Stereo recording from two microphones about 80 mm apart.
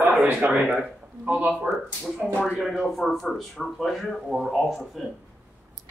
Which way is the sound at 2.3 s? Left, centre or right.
Centre.